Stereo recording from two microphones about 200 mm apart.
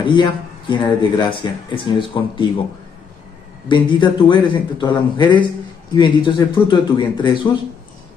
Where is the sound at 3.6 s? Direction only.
25° left (ahead or behind).